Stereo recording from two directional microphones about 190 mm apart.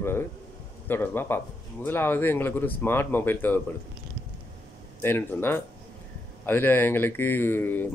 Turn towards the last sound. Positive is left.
turn(degrees=10)  # may be behind; listen again after turning